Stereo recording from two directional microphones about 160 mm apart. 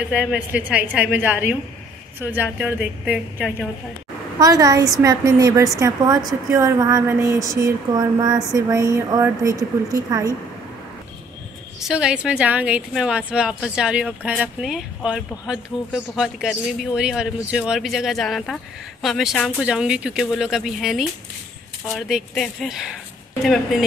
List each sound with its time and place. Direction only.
0.1 s a woman's voice: 5° right (ahead or behind)
4.4 s a woman's voice: 20° right (ahead or behind)
11.8 s speech: 5° right (ahead or behind)